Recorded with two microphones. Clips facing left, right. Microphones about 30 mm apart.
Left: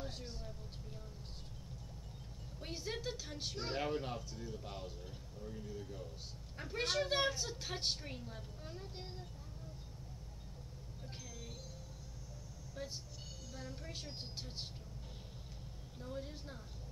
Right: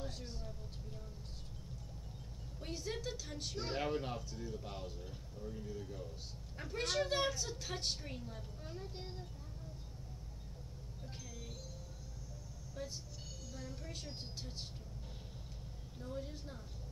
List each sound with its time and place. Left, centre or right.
0.0 s vehicle: centre
2.6 s a sound: centre
3.6 s a woman's voice: centre
12.7 s a woman's voice: centre
13.5 s vehicle: centre
16.0 s a woman's voice: centre